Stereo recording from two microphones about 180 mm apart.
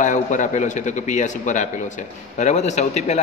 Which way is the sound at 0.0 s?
45° left (ahead or behind).